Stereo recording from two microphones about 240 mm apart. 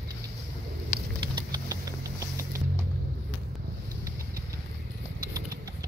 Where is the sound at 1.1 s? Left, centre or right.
Centre.